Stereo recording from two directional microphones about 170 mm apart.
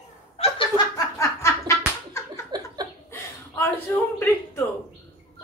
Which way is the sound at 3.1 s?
15° left (ahead or behind).